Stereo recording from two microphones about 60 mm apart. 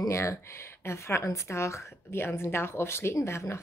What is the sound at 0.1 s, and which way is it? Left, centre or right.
Speech, left.